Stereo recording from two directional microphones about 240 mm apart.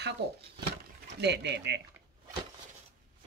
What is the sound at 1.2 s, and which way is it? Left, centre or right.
Speech, right.